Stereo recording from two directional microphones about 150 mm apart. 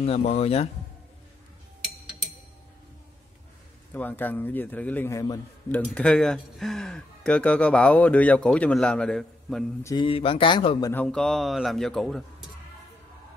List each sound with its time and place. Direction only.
0.0 s a man's voice: 40° left (ahead or behind)
3.9 s speech: 10° left (ahead or behind)
5.9 s speech: 5° left (ahead or behind)
9.8 s speech: 35° left (ahead or behind)
10.8 s a man's voice: 15° left (ahead or behind)